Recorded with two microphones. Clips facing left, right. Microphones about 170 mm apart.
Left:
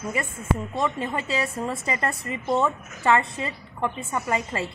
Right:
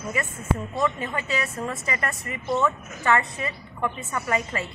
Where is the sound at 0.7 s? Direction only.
30° left (ahead or behind).